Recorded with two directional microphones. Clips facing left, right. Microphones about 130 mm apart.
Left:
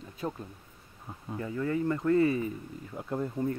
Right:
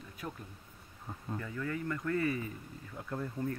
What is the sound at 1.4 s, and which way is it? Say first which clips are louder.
Speech: left 9 dB; 30° left (ahead or behind).